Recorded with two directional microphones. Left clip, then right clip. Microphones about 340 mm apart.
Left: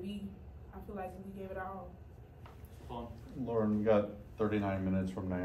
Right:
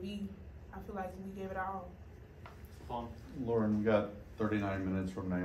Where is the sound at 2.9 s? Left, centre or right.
Right.